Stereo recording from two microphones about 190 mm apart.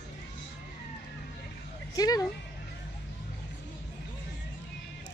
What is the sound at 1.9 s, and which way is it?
Speech, 20° left (ahead or behind).